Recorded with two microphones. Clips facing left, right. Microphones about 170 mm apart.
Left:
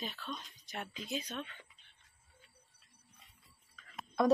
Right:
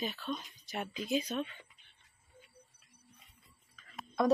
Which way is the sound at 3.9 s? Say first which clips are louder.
Even; centre (ahead or behind).